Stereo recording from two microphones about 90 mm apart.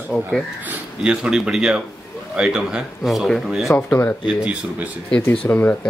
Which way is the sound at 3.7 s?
25° left (ahead or behind).